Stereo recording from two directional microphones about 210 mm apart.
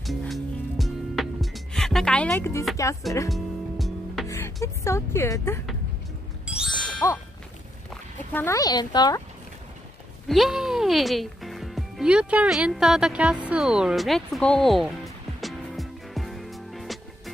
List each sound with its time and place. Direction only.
0.0 s music: centre (ahead or behind)
3.3 s music: centre (ahead or behind)
4.3 s speech: 15° left (ahead or behind)
6.4 s ding: 5° right (ahead or behind)
7.0 s a sound: 15° left (ahead or behind)
7.9 s speech: 10° left (ahead or behind)
10.2 s speech: centre (ahead or behind)
15.4 s music: centre (ahead or behind)